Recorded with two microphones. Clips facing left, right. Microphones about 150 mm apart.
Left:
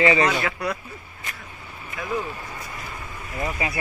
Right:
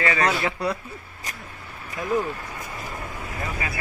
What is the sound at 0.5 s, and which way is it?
Speech, 30° right (ahead or behind).